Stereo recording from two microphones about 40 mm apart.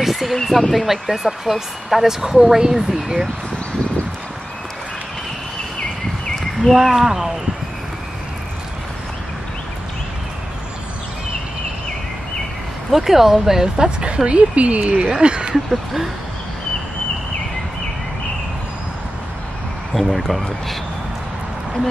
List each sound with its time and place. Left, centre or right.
0.0 s a sound: centre
0.4 s speech: centre
6.7 s speech: centre
12.9 s speech: centre
13.8 s a woman's voice: right
15.0 s a woman's voice: right
15.5 s speech: centre
19.9 s speech: centre